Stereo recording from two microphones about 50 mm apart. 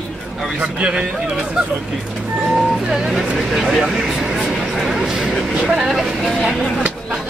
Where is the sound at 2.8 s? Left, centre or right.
Centre.